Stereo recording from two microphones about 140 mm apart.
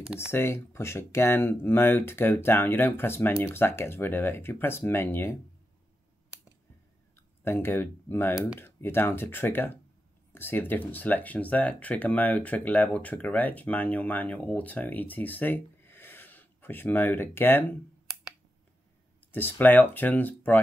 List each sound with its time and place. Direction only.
0.0 s speech: 5° right (ahead or behind)
0.3 s speech: 15° left (ahead or behind)
7.4 s speech: 15° left (ahead or behind)
19.3 s speech: 15° left (ahead or behind)